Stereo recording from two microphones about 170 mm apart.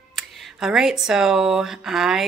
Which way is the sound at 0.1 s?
Centre (ahead or behind).